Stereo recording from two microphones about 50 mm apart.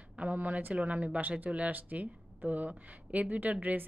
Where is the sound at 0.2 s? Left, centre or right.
Right.